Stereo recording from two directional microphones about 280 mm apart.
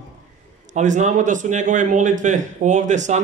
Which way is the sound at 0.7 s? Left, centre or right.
Right.